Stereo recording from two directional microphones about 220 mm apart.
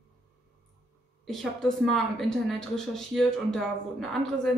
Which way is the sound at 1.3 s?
Centre (ahead or behind).